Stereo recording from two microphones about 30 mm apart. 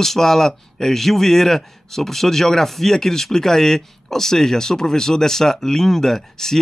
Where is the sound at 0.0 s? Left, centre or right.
Centre.